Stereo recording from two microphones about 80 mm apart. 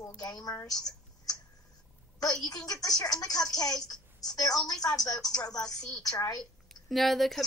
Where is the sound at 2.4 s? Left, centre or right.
Left.